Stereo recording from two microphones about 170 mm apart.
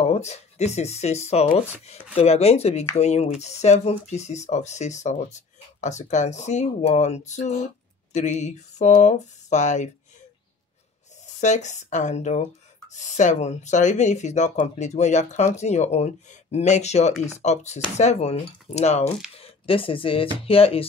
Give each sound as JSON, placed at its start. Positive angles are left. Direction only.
{"t": 0.0, "sound": "speech", "side_deg": 40}
{"t": 11.3, "sound": "speech", "side_deg": 45}
{"t": 19.3, "sound": "a sound", "side_deg": 35}
{"t": 20.4, "sound": "speech", "side_deg": 35}